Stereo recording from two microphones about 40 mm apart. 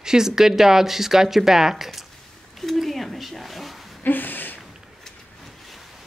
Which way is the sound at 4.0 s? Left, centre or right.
Left.